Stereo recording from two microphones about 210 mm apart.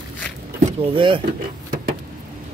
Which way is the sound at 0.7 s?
25° right (ahead or behind).